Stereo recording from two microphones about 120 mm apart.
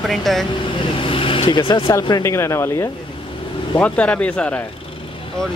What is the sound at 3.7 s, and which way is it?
Speech, 10° left (ahead or behind).